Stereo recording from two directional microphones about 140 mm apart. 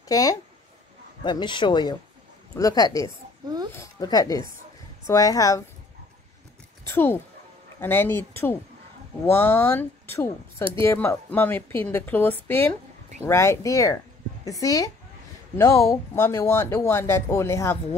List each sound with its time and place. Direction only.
0.1 s a man's voice: 25° left (ahead or behind)
6.9 s a woman's voice: 15° left (ahead or behind)